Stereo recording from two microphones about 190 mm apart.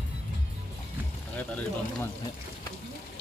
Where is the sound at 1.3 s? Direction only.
10° left (ahead or behind).